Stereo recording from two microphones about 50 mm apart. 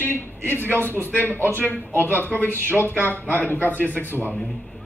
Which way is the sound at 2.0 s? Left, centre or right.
Left.